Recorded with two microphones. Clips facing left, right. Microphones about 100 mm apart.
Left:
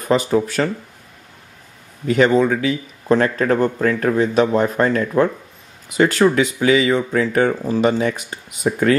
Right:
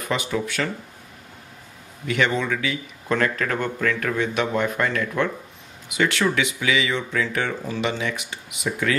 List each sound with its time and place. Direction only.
0.0 s speech: 40° left (ahead or behind)
2.0 s speech: 35° left (ahead or behind)